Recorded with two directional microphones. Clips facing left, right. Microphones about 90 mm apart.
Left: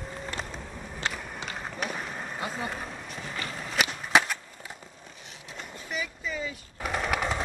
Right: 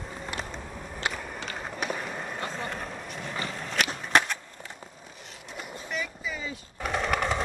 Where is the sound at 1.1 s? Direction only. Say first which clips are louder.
Right 2 dB; centre (ahead or behind).